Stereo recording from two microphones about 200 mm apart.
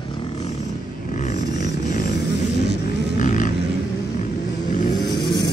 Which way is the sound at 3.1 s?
40° left (ahead or behind).